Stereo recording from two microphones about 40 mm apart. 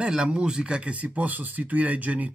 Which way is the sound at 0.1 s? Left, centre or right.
Right.